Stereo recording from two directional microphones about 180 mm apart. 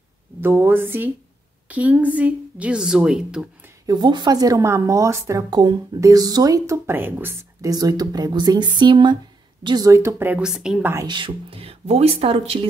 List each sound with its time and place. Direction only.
0.4 s a woman's voice: 10° right (ahead or behind)
3.8 s speech: 25° right (ahead or behind)
11.1 s speech: 25° right (ahead or behind)